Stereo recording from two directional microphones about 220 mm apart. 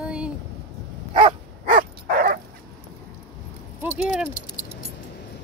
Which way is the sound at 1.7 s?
40° right (ahead or behind).